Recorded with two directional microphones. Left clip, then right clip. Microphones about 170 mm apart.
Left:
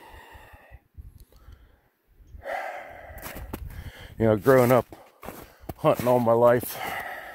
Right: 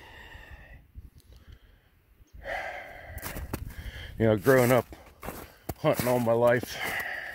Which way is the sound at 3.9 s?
25° left (ahead or behind).